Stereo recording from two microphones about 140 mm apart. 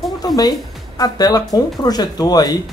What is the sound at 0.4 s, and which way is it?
Speech, 30° left (ahead or behind).